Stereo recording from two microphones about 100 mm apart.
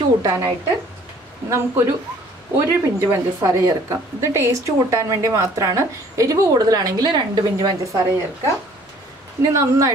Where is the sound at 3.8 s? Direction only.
30° right (ahead or behind).